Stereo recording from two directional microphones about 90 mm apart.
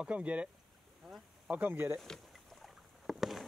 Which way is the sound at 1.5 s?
20° right (ahead or behind).